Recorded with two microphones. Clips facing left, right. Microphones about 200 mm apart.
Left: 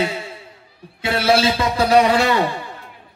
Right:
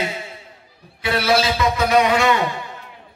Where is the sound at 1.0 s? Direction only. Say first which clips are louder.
Left 2 dB; 25° left (ahead or behind).